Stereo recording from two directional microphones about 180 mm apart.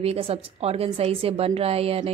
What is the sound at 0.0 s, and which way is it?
A woman's voice, 35° right (ahead or behind).